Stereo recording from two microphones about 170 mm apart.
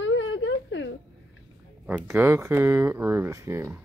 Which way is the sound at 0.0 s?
90° left.